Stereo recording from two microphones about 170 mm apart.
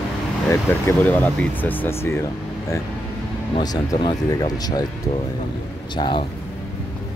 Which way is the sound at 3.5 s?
25° left (ahead or behind).